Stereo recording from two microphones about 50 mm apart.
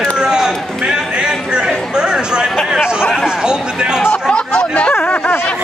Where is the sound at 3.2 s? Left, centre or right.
Centre.